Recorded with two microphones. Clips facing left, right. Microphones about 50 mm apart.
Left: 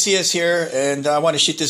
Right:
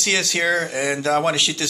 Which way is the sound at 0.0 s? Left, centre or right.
Right.